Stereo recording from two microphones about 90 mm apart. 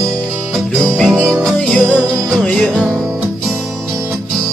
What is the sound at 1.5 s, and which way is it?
Music, 10° left (ahead or behind).